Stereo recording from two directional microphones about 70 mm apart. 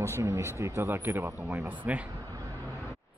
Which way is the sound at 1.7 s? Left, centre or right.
Right.